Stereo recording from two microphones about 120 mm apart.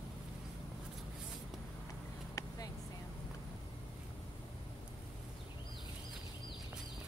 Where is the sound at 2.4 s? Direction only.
30° left (ahead or behind).